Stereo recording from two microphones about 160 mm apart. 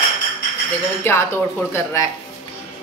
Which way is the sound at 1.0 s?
15° left (ahead or behind).